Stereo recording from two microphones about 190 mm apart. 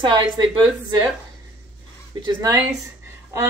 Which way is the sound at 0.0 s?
25° right (ahead or behind).